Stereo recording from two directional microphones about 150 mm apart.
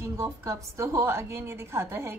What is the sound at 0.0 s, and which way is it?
A woman's voice, 20° right (ahead or behind).